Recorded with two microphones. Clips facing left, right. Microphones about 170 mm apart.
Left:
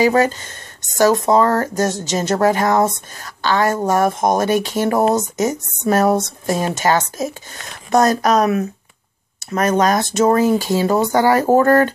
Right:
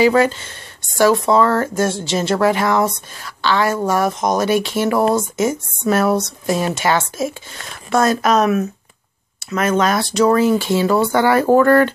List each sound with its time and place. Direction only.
0.0 s speech: 45° left (ahead or behind)
9.5 s speech: 40° left (ahead or behind)